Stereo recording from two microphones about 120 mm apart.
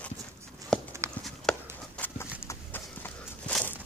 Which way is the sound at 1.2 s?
5° left (ahead or behind).